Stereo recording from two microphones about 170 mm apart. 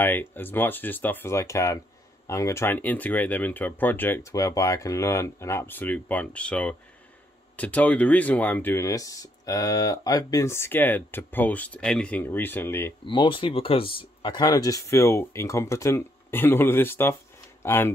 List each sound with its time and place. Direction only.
0.0 s speech: 10° left (ahead or behind)
13.0 s speech: 30° left (ahead or behind); by 17.9 s 15° left (ahead or behind)